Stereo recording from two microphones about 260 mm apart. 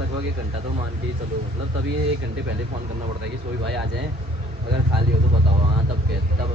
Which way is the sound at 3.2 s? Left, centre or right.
Right.